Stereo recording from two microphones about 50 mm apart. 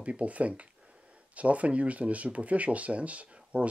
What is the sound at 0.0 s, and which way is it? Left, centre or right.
Speech, right.